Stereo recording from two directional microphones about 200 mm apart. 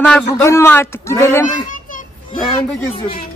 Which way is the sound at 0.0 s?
10° left (ahead or behind).